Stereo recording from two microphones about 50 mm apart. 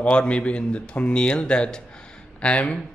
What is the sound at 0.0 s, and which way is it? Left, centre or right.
A man's voice, left.